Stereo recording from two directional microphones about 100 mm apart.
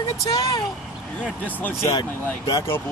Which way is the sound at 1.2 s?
15° left (ahead or behind).